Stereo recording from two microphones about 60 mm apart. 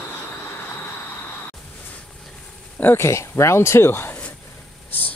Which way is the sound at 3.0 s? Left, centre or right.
Left.